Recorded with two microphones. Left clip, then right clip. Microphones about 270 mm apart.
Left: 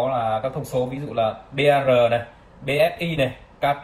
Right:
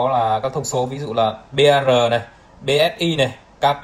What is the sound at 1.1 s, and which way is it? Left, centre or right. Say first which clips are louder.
Speech: right 5 dB; right.